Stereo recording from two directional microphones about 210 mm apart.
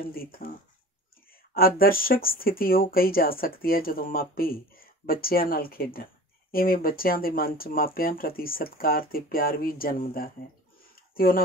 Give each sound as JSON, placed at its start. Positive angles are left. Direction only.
{"t": 0.1, "sound": "speech", "side_deg": 45}
{"t": 1.5, "sound": "speech", "side_deg": 45}